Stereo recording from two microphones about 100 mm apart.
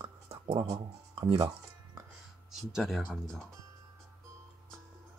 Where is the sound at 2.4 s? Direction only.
5° right (ahead or behind).